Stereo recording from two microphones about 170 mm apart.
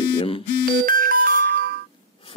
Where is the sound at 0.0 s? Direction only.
30° left (ahead or behind).